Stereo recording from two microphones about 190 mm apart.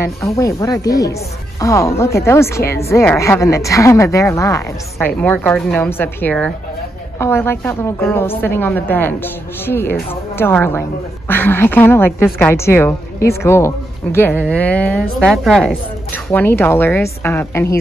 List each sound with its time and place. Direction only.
0.4 s a woman's voice: 15° left (ahead or behind)